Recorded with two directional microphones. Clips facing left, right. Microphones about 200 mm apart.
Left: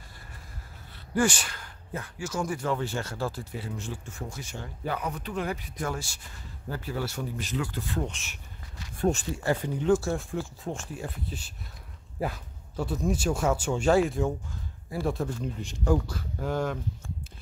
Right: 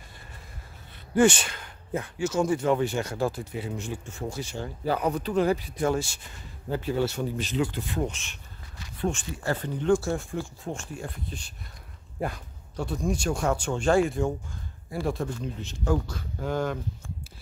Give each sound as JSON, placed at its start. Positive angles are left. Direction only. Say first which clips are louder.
{"t": 1.1, "sound": "speech", "louder": "right 5 dB", "side_deg": -25}
{"t": 4.3, "sound": "speech", "louder": "right 6 dB", "side_deg": -30}
{"t": 8.1, "sound": "speech", "louder": "right 1 dB", "side_deg": 5}
{"t": 8.9, "sound": "a sound", "louder": "left 3 dB", "side_deg": 40}
{"t": 9.6, "sound": "speech", "louder": "right 3 dB", "side_deg": 10}